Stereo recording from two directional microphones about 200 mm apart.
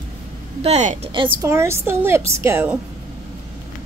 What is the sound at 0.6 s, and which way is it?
Speech, 35° right (ahead or behind).